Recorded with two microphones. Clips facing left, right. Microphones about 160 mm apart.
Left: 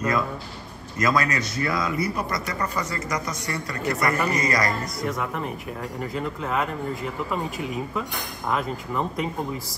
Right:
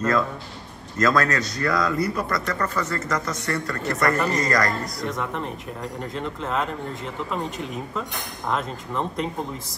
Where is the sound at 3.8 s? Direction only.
Centre (ahead or behind).